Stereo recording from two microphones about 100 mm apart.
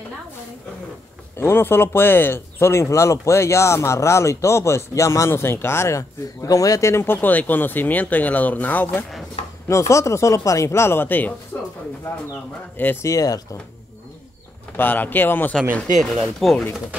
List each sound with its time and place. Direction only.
1.3 s speech: 25° left (ahead or behind)
9.7 s speech: 30° left (ahead or behind)
12.7 s speech: 20° left (ahead or behind)
13.0 s speech: 35° left (ahead or behind)
14.8 s speech: 20° left (ahead or behind)
16.0 s speech: centre (ahead or behind)